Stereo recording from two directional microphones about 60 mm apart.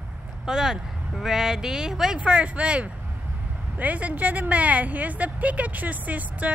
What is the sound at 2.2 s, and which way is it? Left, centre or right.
A woman's voice, right.